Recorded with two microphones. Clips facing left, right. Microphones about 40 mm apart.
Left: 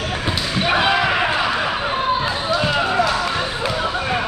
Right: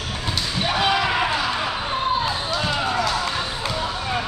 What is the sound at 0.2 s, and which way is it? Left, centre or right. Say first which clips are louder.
Basketball bounce: left 2 dB; left.